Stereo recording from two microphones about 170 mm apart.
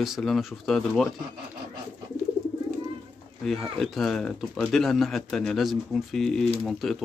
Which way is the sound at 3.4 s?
Centre (ahead or behind).